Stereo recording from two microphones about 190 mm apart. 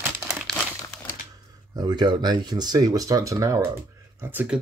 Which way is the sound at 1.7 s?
20° right (ahead or behind).